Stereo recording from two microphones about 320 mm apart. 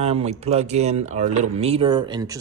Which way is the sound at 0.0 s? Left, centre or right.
Centre.